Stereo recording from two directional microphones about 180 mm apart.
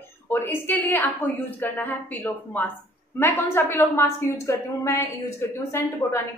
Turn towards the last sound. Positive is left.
turn(degrees=15)  # may be behind; listen again after turning